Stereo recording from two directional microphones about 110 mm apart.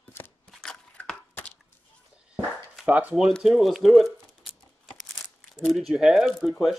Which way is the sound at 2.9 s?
15° right (ahead or behind).